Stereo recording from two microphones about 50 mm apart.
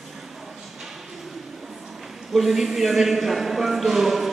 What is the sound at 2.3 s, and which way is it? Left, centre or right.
A man's voice, centre.